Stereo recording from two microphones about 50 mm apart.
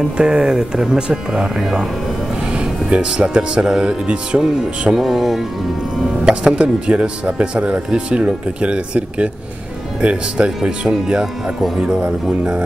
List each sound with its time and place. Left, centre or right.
0.2 s speech: centre
4.4 s speech: centre
6.2 s speech: centre